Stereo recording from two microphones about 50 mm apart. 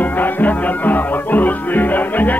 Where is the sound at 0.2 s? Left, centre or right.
Left.